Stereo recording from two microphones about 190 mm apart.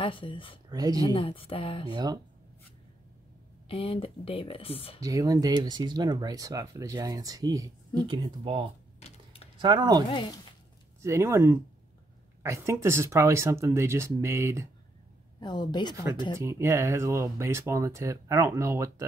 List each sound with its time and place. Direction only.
0.0 s speech: 25° left (ahead or behind)
0.7 s speech: 20° right (ahead or behind)
1.1 s speech: 30° left (ahead or behind)
1.9 s speech: 20° right (ahead or behind)
3.6 s speech: 30° left (ahead or behind)
5.0 s speech: 20° right (ahead or behind)
9.0 s computer keyboard: 30° left (ahead or behind)
9.6 s speech: 25° right (ahead or behind)
10.0 s speech: 25° left (ahead or behind)
11.0 s speech: 15° right (ahead or behind)
15.4 s speech: 25° left (ahead or behind)
16.3 s speech: 15° right (ahead or behind)